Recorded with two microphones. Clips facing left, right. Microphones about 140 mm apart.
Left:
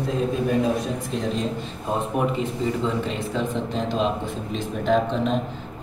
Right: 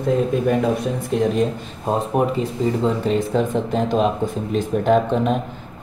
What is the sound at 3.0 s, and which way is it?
Speech, 45° right (ahead or behind).